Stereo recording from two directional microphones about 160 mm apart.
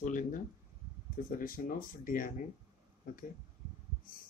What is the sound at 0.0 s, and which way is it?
Speech, 50° left (ahead or behind).